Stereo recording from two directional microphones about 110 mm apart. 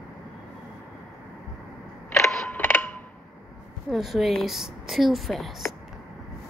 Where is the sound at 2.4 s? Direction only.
20° left (ahead or behind).